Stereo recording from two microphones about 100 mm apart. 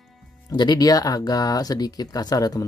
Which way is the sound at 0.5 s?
50° left (ahead or behind).